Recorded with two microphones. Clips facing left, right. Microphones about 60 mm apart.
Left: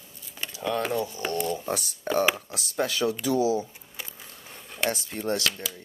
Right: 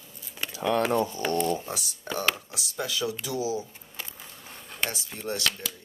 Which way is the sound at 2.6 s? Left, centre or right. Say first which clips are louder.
Left 4 dB; left.